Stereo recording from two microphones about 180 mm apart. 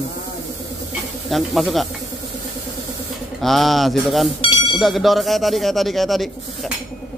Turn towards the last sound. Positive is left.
turn(degrees=0)  # may be behind; listen again after turning